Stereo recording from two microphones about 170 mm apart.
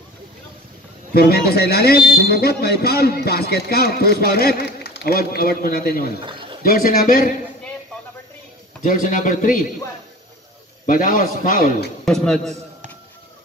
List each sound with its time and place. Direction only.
1.1 s speech: 65° left (ahead or behind)
6.2 s a sound: 30° right (ahead or behind)
6.6 s speech: 55° left (ahead or behind)
8.8 s a man's voice: 50° left (ahead or behind)
10.9 s a man's voice: 50° left (ahead or behind)
12.0 s speech: 5° left (ahead or behind)